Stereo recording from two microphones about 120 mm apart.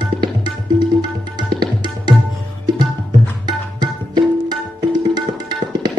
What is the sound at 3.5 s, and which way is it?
Music, 40° right (ahead or behind).